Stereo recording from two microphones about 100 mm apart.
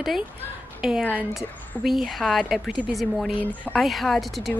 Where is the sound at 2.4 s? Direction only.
15° right (ahead or behind).